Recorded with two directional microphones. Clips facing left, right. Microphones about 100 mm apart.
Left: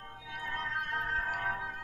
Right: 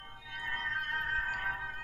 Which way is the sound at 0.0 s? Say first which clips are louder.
Left 3 dB; 25° left (ahead or behind).